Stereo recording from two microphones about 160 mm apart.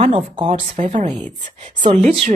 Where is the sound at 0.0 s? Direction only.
35° right (ahead or behind).